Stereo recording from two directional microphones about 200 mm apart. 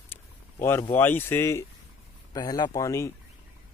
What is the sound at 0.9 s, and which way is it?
Speech, 10° left (ahead or behind).